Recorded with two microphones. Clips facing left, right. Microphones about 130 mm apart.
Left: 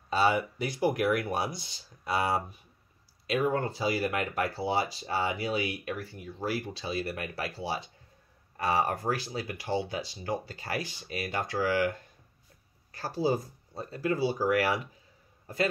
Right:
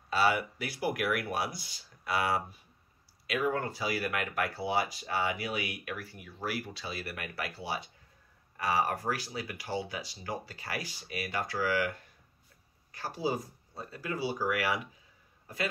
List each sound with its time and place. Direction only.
0.1 s speech: 25° left (ahead or behind)
13.0 s a man's voice: 30° left (ahead or behind)